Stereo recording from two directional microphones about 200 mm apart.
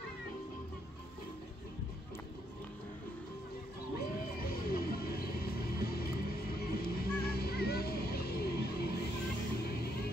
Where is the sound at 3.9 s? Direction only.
50° left (ahead or behind).